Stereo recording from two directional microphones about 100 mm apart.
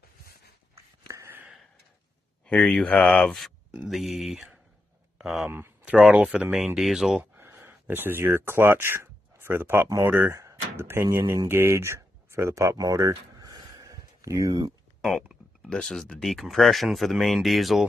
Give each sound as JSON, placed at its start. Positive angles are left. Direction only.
{"t": 0.7, "sound": "a sound", "side_deg": -30}
{"t": 2.4, "sound": "speech", "side_deg": 15}
{"t": 3.9, "sound": "speech", "side_deg": 0}
{"t": 5.5, "sound": "a sound", "side_deg": -20}
{"t": 5.9, "sound": "speech", "side_deg": -5}
{"t": 7.3, "sound": "speech", "side_deg": -20}
{"t": 10.3, "sound": "speech", "side_deg": -30}
{"t": 15.0, "sound": "a sound", "side_deg": 0}
{"t": 15.7, "sound": "speech", "side_deg": 5}